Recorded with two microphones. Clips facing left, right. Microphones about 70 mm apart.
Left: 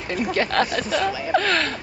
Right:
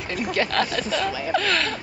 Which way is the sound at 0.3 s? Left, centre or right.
Left.